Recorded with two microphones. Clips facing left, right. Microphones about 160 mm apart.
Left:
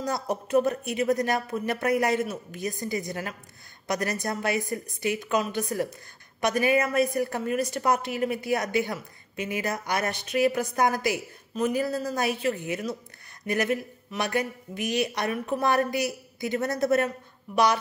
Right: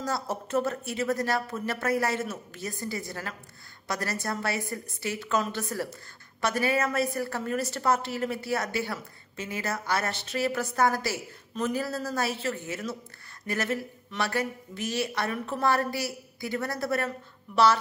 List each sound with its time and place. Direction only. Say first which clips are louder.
0.0 s a woman's voice: left 2 dB; 15° left (ahead or behind)